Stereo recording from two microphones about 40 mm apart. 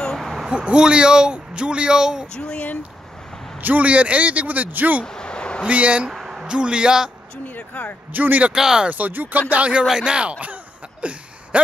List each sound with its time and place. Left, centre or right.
0.2 s a sound: centre
0.5 s speech: right
2.3 s speech: left
3.8 s speech: right
5.0 s a sound: centre
5.7 s speech: right
6.2 s speech: centre
7.4 s speech: left
8.1 s speech: right
8.5 s speech: centre
8.9 s speech: right
9.5 s speech: right
9.8 s speech: right
10.5 s a sound: right